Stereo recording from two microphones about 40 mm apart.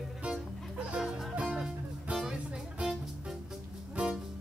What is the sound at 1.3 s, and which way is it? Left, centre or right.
Music, right.